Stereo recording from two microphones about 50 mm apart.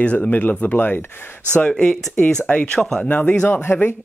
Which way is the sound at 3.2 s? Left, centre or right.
Left.